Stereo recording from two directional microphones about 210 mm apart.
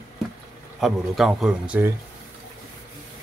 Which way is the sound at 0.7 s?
Centre (ahead or behind).